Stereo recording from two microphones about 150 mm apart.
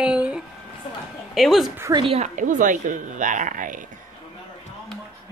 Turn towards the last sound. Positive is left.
turn(degrees=-60)  # may be behind; listen again after turning